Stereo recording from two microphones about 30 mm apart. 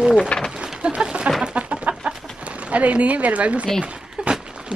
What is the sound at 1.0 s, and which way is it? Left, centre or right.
Music, right.